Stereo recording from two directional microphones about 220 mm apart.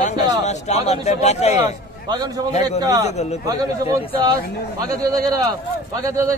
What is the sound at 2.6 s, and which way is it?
A man's voice, 15° right (ahead or behind).